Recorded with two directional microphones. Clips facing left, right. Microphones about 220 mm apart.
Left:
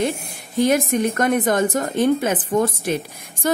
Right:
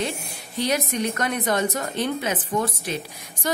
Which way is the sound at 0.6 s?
50° left (ahead or behind).